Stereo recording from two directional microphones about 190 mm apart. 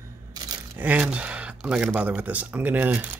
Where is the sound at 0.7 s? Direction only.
5° right (ahead or behind).